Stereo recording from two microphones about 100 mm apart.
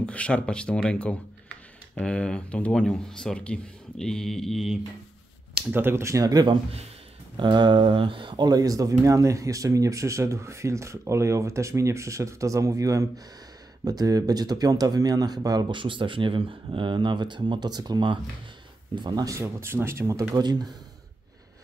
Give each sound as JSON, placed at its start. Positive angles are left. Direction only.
{"t": 0.0, "sound": "speech", "side_deg": 10}
{"t": 5.7, "sound": "speech", "side_deg": -20}
{"t": 15.8, "sound": "speech", "side_deg": -55}
{"t": 19.2, "sound": "speech", "side_deg": -30}
{"t": 20.3, "sound": "speech", "side_deg": -40}